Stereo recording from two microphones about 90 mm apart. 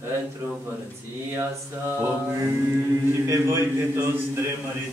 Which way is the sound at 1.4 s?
30° right (ahead or behind).